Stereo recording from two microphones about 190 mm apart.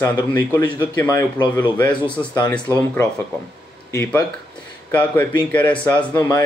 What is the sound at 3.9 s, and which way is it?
Speech, 15° left (ahead or behind).